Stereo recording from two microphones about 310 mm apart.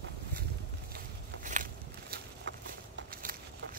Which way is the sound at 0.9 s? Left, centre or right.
Right.